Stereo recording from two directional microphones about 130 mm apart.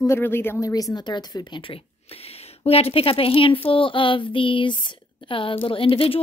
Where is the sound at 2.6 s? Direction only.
50° left (ahead or behind).